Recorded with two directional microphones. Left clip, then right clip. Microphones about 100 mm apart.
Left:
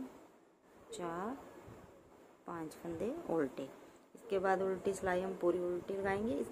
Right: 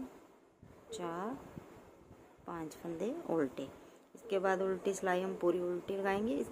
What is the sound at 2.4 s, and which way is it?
A woman's voice, 10° right (ahead or behind).